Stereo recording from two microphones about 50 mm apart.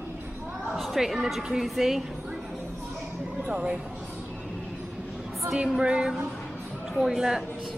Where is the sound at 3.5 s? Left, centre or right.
Right.